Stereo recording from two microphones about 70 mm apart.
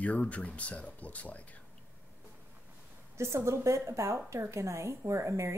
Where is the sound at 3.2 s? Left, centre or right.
Right.